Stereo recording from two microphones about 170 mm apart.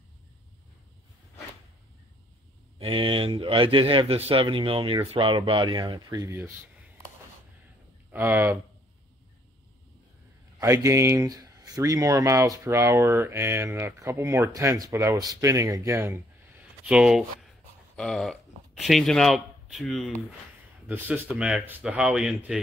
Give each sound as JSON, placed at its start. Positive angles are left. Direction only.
{"t": 2.8, "sound": "a man's voice", "side_deg": -30}
{"t": 8.1, "sound": "speech", "side_deg": -10}
{"t": 10.6, "sound": "speech", "side_deg": -20}
{"t": 16.8, "sound": "speech", "side_deg": -5}
{"t": 20.8, "sound": "speech", "side_deg": -10}